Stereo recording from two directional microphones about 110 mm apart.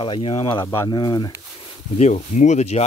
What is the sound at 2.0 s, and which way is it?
Speech, 85° left.